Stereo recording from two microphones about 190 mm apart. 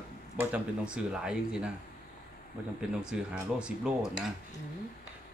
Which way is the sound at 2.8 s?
5° right (ahead or behind).